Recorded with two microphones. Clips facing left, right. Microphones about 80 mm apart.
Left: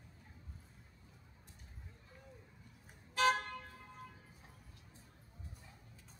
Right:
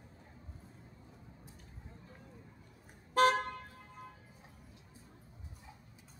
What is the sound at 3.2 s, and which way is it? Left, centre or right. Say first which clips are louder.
Vehicle: right 5 dB; right.